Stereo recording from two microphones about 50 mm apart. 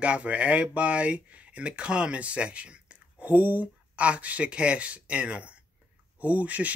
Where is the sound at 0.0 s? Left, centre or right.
Right.